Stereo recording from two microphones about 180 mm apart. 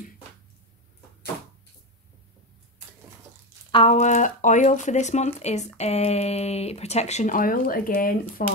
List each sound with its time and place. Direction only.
3.7 s speech: 35° left (ahead or behind)